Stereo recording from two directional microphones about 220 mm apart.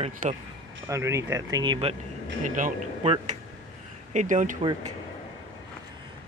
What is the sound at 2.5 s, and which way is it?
Speech, 35° right (ahead or behind).